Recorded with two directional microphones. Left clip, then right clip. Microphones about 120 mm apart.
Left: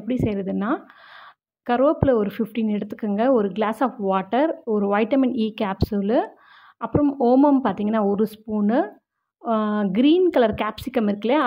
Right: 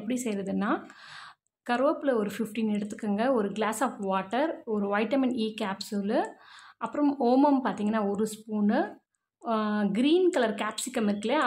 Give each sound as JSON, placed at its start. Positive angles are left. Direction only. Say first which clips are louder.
{"t": 0.0, "sound": "speech", "louder": "left 7 dB", "side_deg": 35}
{"t": 6.8, "sound": "speech", "louder": "left 6 dB", "side_deg": 35}
{"t": 7.6, "sound": "speech", "louder": "left 7 dB", "side_deg": 45}